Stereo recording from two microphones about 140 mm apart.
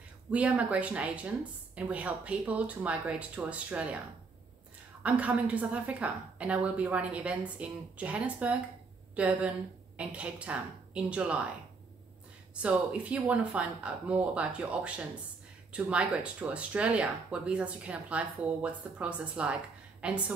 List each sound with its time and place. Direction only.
0.3 s speech: 10° right (ahead or behind)
5.0 s speech: 10° right (ahead or behind)
12.6 s speech: 10° right (ahead or behind)